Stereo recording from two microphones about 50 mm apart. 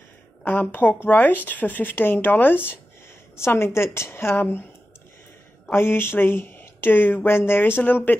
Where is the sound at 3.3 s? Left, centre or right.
Left.